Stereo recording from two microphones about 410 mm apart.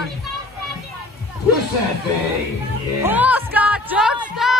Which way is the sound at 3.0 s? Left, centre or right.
Centre.